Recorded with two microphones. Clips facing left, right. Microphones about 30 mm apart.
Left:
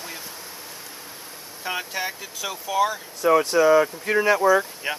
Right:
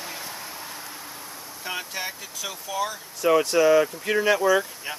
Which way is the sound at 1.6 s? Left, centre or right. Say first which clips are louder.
Left 3 dB; centre.